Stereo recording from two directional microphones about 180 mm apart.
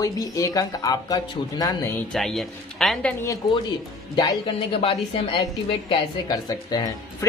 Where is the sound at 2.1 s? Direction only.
Centre (ahead or behind).